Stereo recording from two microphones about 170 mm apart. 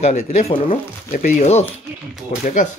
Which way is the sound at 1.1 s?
50° left (ahead or behind).